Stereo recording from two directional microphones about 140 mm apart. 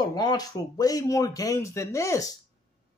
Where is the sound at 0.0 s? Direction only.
30° left (ahead or behind).